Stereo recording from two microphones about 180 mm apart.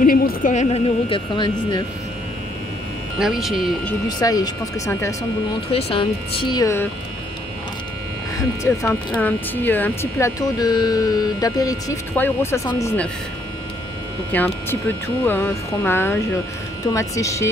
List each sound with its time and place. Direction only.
0.0 s a woman's voice: 50° left (ahead or behind); by 1.9 s 25° left (ahead or behind)
3.2 s speech: centre (ahead or behind)
4.2 s speech: 20° left (ahead or behind)
5.7 s speech: 30° left (ahead or behind); by 6.9 s 15° left (ahead or behind)
8.4 s speech: 15° left (ahead or behind)
14.3 s speech: 10° left (ahead or behind)